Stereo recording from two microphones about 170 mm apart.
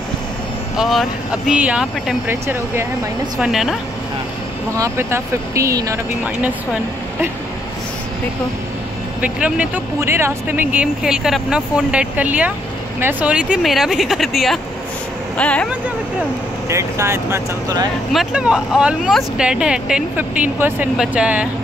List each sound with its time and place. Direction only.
0.7 s speech: centre (ahead or behind)
3.3 s speech: 5° right (ahead or behind)
4.7 s speech: 15° right (ahead or behind)
9.2 s speech: 5° right (ahead or behind)
16.6 s speech: 15° right (ahead or behind)
18.1 s speech: 5° right (ahead or behind)